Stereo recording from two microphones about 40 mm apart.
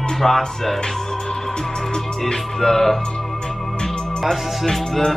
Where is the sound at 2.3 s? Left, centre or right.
Centre.